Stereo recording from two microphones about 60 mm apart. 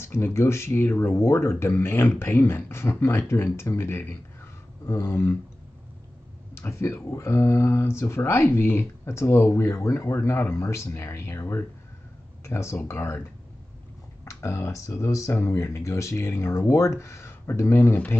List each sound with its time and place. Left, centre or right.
0.0 s speech: left
6.5 s speech: left
14.2 s speech: left